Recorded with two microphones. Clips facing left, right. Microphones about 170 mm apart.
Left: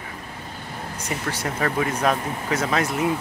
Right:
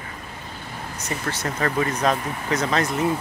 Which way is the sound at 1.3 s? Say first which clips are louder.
Even; 10° left (ahead or behind).